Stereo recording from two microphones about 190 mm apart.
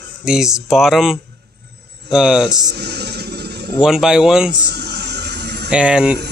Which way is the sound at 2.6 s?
60° right (ahead or behind).